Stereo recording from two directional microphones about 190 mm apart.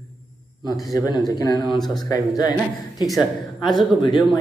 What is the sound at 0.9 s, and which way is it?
Speech, 20° left (ahead or behind).